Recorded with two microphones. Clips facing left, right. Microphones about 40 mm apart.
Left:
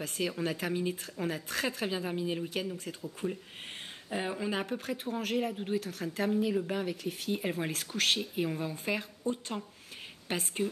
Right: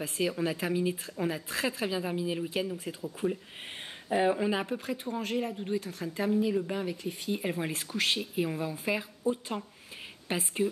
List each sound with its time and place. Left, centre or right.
0.0 s speech: centre
2.4 s speech: centre
3.2 s speech: right
4.1 s speech: centre